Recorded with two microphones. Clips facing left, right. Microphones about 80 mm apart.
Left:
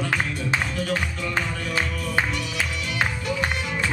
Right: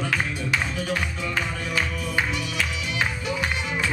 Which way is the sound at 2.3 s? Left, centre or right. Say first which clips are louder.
Even; centre.